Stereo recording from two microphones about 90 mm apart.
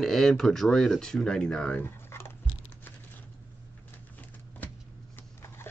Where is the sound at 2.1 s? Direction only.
30° left (ahead or behind).